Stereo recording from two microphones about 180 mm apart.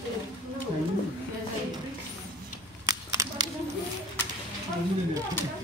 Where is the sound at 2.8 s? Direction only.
20° right (ahead or behind).